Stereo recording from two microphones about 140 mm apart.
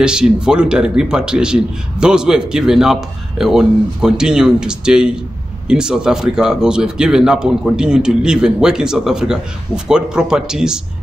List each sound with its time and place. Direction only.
0.0 s a man's voice: 5° right (ahead or behind)